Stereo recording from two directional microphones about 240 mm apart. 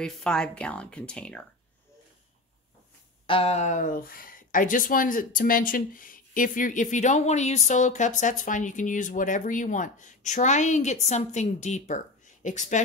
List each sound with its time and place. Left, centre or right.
0.0 s speech: centre
3.3 s speech: left